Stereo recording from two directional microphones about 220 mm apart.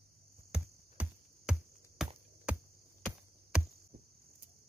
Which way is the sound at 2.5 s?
5° right (ahead or behind).